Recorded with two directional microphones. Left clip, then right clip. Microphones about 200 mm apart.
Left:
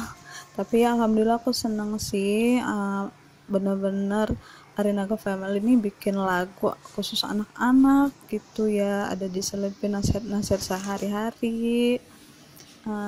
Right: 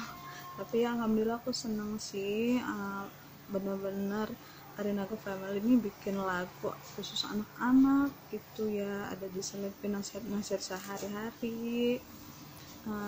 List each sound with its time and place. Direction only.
0.3 s speech: 40° left (ahead or behind)